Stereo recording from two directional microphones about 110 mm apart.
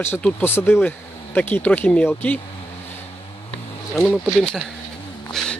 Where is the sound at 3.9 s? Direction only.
5° left (ahead or behind).